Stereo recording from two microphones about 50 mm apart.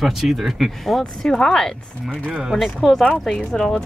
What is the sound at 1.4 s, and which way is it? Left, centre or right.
Speech, centre.